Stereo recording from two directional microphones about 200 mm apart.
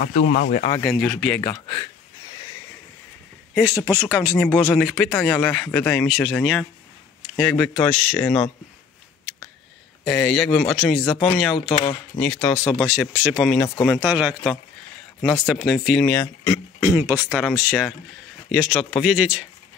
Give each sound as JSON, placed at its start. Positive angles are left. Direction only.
{"t": 0.0, "sound": "speech", "side_deg": 45}
{"t": 0.7, "sound": "speech", "side_deg": 0}
{"t": 1.4, "sound": "speech", "side_deg": 25}
{"t": 3.5, "sound": "speech", "side_deg": -5}
{"t": 4.5, "sound": "speech", "side_deg": 5}
{"t": 6.0, "sound": "speech", "side_deg": 0}
{"t": 10.0, "sound": "speech", "side_deg": 0}
{"t": 11.5, "sound": "speech", "side_deg": 25}
{"t": 12.2, "sound": "speech", "side_deg": 10}
{"t": 13.0, "sound": "speech", "side_deg": -5}
{"t": 13.5, "sound": "speech", "side_deg": 5}
{"t": 13.9, "sound": "speech", "side_deg": -5}
{"t": 16.2, "sound": "speech", "side_deg": 15}
{"t": 17.3, "sound": "speech", "side_deg": -5}